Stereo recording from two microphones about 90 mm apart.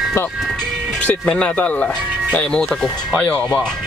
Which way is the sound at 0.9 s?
10° left (ahead or behind).